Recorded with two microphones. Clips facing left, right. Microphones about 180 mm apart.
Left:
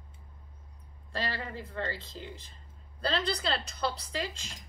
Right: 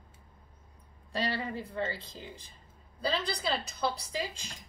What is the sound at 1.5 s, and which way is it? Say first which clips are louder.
A woman's voice: right 2 dB; 10° right (ahead or behind).